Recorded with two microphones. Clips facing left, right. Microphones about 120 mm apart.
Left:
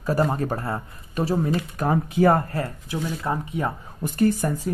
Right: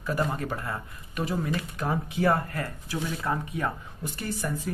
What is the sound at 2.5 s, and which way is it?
Speech, 25° left (ahead or behind).